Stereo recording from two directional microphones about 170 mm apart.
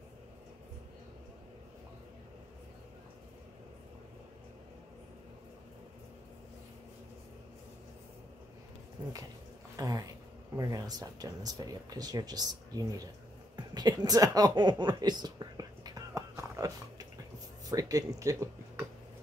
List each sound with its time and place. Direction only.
9.8 s speech: 20° right (ahead or behind)
13.7 s a sound: 25° right (ahead or behind)
17.6 s speech: 20° right (ahead or behind)